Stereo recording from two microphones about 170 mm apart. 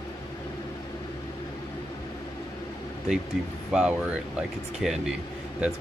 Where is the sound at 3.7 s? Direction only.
5° right (ahead or behind).